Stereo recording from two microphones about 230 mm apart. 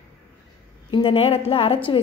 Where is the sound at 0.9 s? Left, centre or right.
Left.